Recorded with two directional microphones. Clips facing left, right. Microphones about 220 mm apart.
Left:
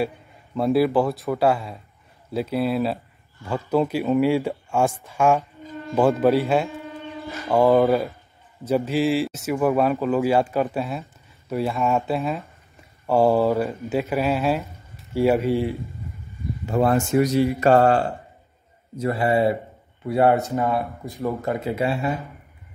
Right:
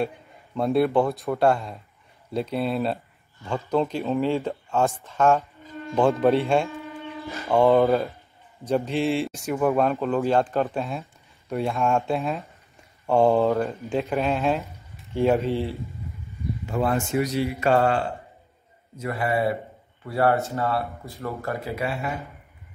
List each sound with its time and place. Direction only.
0.6 s speech: centre (ahead or behind)
16.6 s speech: 40° left (ahead or behind)
18.9 s speech: 30° left (ahead or behind)